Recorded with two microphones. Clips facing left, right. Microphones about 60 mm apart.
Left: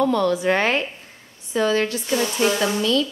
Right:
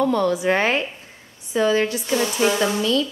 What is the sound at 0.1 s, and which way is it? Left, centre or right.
A woman's voice, centre.